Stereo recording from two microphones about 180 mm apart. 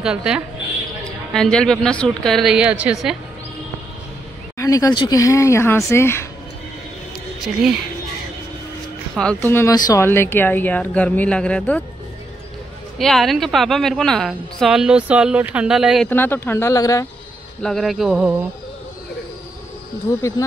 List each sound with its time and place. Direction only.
0.0 s a woman's voice: 5° right (ahead or behind)
4.6 s speech: 20° left (ahead or behind)
7.3 s speech: 5° right (ahead or behind)
9.2 s speech: 10° left (ahead or behind)
13.0 s a woman's voice: centre (ahead or behind)
16.1 s speech: 10° left (ahead or behind)
17.6 s a woman's voice: centre (ahead or behind)
20.1 s speech: 15° left (ahead or behind)